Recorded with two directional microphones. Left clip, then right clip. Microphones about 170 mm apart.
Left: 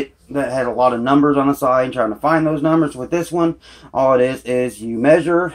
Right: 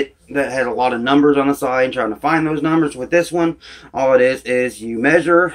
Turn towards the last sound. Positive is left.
turn(degrees=25)  # may be behind; listen again after turning